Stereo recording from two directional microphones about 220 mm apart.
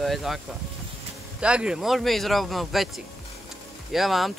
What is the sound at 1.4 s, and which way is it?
Speech, 5° right (ahead or behind).